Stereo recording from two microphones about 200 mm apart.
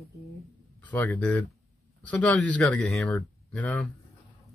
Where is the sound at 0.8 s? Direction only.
10° left (ahead or behind).